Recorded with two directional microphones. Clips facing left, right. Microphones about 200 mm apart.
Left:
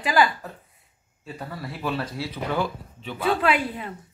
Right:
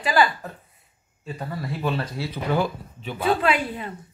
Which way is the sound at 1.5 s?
20° right (ahead or behind).